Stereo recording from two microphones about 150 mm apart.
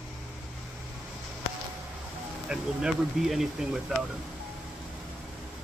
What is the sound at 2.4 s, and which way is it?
Speech, 5° right (ahead or behind).